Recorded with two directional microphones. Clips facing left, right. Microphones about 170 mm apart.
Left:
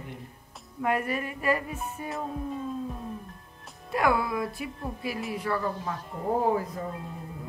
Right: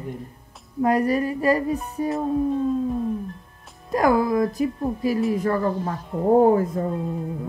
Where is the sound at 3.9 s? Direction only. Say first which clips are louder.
Right 7 dB; 40° right (ahead or behind).